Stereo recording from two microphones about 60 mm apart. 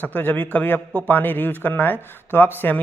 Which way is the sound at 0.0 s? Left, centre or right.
Left.